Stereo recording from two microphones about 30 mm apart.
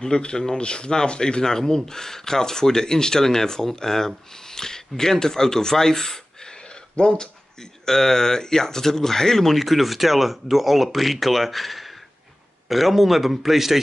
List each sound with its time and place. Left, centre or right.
0.1 s speech: left
1.4 s speech: centre
7.8 s speech: centre